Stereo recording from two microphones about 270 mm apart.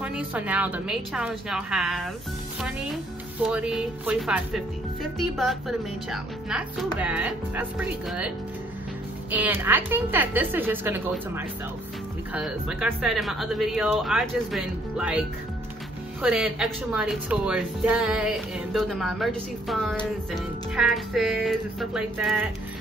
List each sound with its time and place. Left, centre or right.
0.0 s speech: centre
3.4 s speech: centre
9.3 s a woman's voice: centre